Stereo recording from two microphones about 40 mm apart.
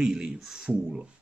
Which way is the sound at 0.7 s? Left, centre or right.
Centre.